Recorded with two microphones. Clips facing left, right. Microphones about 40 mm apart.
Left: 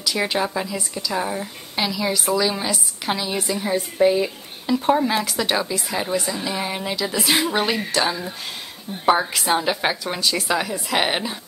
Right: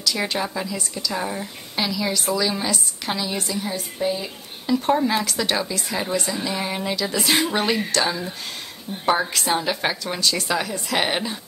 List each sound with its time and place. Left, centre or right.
0.0 s a woman's voice: centre
4.0 s speech: left
4.6 s a woman's voice: centre